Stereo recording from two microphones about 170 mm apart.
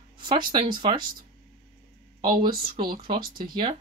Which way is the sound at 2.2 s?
30° right (ahead or behind).